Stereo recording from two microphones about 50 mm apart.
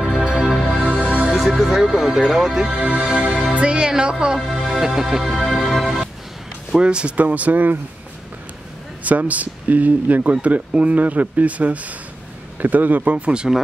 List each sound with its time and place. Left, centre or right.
0.0 s music: centre
0.8 s music: right
1.3 s speech: centre
2.6 s speech: right; by 6.0 s centre
6.7 s speech: centre
7.2 s speech: right
9.0 s speech: right
13.3 s speech: centre